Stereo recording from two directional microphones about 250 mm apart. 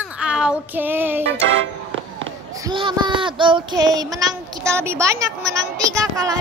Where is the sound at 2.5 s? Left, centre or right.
Centre.